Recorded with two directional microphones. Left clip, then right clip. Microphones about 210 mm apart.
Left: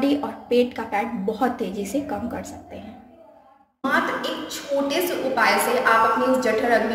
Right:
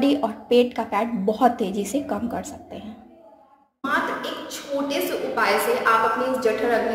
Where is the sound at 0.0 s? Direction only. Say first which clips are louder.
Right 2 dB; 25° right (ahead or behind).